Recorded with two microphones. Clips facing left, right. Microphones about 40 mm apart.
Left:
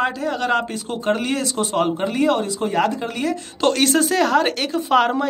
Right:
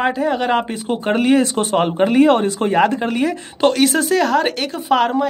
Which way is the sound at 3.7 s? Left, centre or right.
Centre.